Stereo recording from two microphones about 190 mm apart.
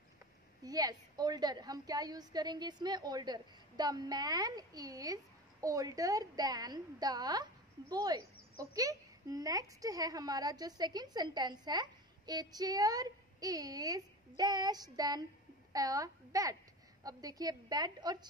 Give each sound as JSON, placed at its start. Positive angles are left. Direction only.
{"t": 0.7, "sound": "a child's voice", "side_deg": -20}